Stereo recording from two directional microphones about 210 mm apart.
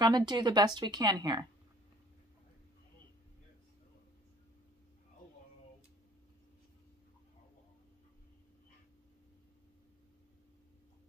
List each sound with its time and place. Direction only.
0.0 s a woman's voice: 20° right (ahead or behind)